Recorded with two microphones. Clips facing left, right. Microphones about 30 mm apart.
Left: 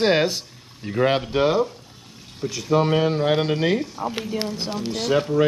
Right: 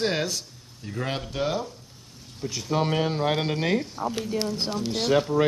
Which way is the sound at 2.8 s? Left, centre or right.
Centre.